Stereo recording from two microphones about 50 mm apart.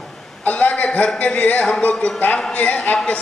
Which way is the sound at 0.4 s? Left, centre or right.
Left.